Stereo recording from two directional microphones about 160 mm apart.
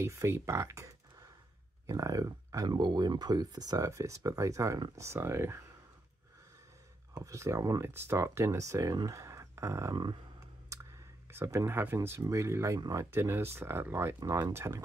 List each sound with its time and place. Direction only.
0.0 s speech: 15° right (ahead or behind)
7.2 s speech: 20° right (ahead or behind)
11.3 s speech: 15° right (ahead or behind)